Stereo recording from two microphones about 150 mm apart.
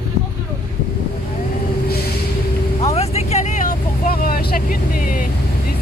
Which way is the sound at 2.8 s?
45° left (ahead or behind).